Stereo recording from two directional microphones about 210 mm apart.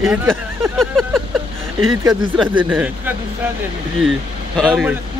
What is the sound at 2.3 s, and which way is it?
Speech, 5° right (ahead or behind).